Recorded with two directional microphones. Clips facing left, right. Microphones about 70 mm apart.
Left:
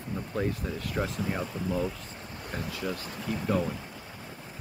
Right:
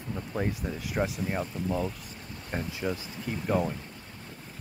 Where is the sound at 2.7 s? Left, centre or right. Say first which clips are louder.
Right 1 dB; right.